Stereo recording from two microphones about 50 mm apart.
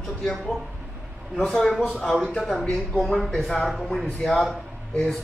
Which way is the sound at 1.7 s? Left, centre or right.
Centre.